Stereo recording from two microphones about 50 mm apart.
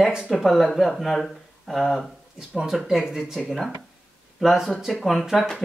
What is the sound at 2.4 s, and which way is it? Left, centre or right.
Speech, centre.